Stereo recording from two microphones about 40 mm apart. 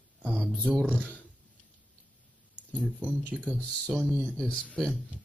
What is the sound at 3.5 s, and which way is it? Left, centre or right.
Speech, left.